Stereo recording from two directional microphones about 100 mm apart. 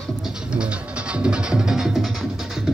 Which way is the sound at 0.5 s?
10° right (ahead or behind).